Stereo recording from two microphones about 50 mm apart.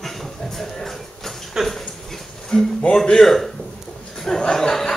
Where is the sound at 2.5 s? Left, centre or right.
Centre.